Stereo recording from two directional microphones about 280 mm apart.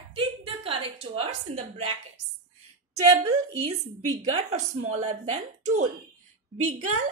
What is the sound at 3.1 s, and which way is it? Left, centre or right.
Speech, centre.